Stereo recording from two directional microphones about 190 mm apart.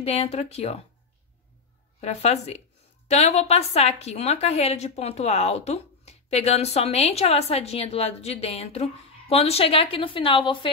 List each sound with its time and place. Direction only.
0.0 s a woman's voice: 35° left (ahead or behind)
2.0 s a woman's voice: 35° left (ahead or behind)